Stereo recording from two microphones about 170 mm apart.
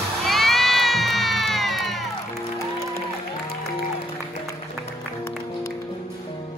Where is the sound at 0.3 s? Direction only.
Centre (ahead or behind).